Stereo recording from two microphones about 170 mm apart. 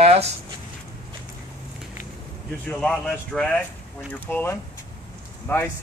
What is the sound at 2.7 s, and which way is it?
Speech, 5° left (ahead or behind).